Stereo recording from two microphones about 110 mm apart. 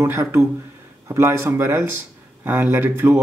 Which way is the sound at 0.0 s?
25° right (ahead or behind).